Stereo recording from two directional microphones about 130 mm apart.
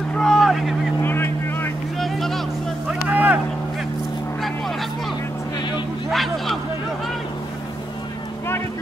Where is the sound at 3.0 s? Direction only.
10° right (ahead or behind).